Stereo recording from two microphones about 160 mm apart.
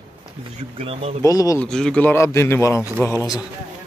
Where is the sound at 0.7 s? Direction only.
40° right (ahead or behind).